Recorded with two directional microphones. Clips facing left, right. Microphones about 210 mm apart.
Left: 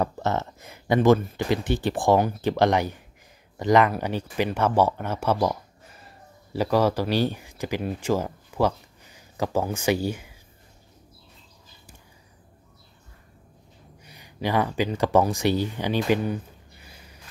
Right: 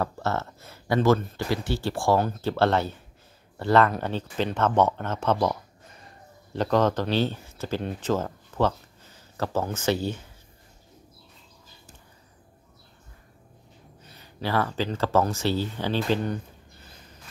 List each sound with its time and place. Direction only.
0.0 s speech: 15° left (ahead or behind)
14.0 s speech: 15° left (ahead or behind)
16.8 s a sound: 10° left (ahead or behind)